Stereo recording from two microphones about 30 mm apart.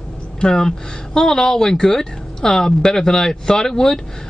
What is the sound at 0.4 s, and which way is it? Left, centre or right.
Speech, left.